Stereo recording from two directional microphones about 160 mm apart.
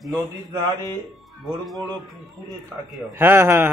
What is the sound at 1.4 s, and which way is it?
Speech, centre (ahead or behind).